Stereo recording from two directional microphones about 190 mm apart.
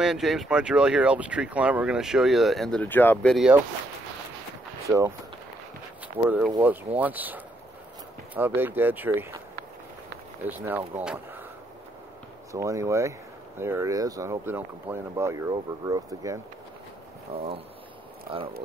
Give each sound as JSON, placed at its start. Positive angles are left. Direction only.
{"t": 0.0, "sound": "speech", "side_deg": 0}
{"t": 4.8, "sound": "speech", "side_deg": -15}
{"t": 6.1, "sound": "speech", "side_deg": -10}
{"t": 10.4, "sound": "speech", "side_deg": -10}
{"t": 12.5, "sound": "speech", "side_deg": -15}
{"t": 17.3, "sound": "speech", "side_deg": -30}